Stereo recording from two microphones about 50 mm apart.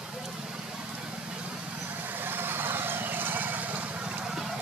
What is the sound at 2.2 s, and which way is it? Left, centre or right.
Vehicle, right.